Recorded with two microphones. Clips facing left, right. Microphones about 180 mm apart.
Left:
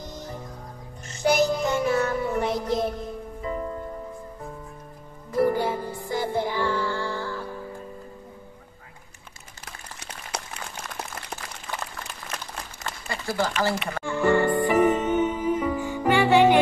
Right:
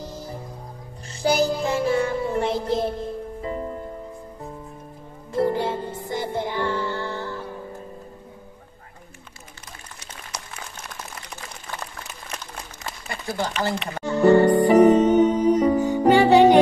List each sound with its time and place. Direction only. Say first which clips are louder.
1.0 s music: right 1 dB; 30° right (ahead or behind)
5.3 s music: even; 25° right (ahead or behind)
12.8 s a sound: left 1 dB; 20° right (ahead or behind)
14.0 s music: right 6 dB; 40° right (ahead or behind)